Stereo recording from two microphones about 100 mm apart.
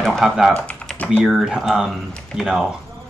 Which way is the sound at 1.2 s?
5° right (ahead or behind).